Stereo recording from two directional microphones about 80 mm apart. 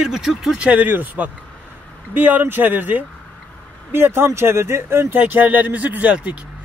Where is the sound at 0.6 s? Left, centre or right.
Centre.